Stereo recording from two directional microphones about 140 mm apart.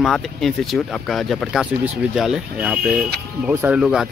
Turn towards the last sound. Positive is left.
turn(degrees=-5)  # may be behind; listen again after turning